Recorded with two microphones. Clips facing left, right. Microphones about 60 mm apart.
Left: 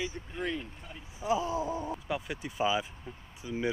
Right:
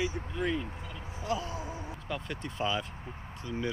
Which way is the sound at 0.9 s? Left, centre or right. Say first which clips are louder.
Left 4 dB; centre.